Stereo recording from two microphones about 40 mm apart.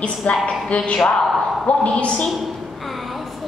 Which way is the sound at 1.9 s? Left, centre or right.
Left.